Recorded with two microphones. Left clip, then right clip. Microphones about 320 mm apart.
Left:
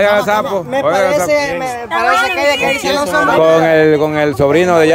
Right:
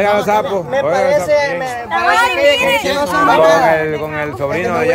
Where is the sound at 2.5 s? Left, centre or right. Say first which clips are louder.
Right 1 dB; centre.